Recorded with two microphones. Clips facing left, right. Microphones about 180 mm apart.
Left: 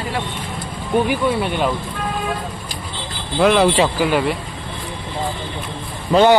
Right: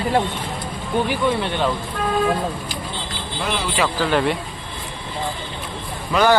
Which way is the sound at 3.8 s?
15° left (ahead or behind).